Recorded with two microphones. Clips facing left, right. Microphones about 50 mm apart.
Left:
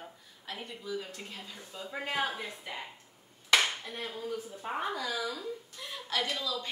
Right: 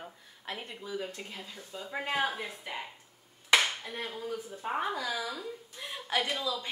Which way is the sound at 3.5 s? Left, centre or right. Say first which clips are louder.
Right 1 dB; centre.